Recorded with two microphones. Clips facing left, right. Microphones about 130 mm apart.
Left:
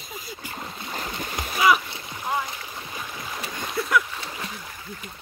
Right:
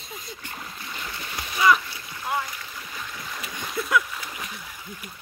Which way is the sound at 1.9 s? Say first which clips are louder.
Left 1 dB; 25° left (ahead or behind).